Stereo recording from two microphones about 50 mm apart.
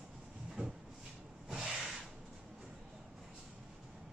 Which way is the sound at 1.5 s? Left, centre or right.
Centre.